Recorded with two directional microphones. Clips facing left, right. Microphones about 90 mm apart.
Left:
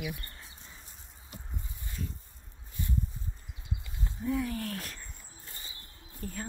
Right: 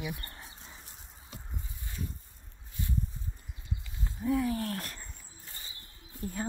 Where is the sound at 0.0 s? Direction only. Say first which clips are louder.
Even; 20° right (ahead or behind).